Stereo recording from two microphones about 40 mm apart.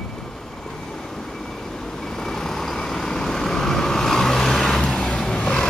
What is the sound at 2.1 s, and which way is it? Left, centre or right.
Vehicle, centre.